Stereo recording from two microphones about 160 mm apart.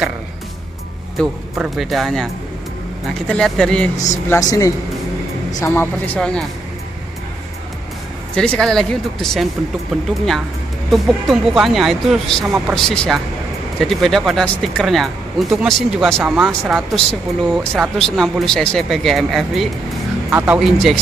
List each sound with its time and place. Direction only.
1.1 s speech: centre (ahead or behind)
3.3 s speech: 5° left (ahead or behind)
4.0 s a woman's voice: 20° left (ahead or behind); by 6.4 s 5° left (ahead or behind)
8.4 s speech: 5° left (ahead or behind)
10.9 s speech: centre (ahead or behind)
20.2 s speech: 10° right (ahead or behind)